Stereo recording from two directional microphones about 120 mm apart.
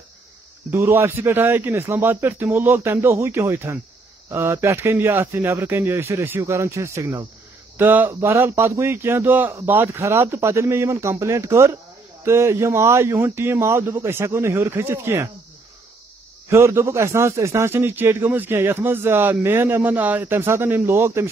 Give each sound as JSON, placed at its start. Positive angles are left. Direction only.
{"t": 0.7, "sound": "a man's voice", "side_deg": -20}
{"t": 16.4, "sound": "a man's voice", "side_deg": -25}